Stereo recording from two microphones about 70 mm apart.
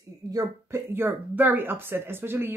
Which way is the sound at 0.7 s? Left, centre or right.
Right.